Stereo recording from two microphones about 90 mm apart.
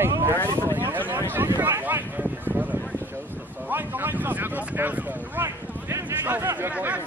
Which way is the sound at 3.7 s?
20° right (ahead or behind).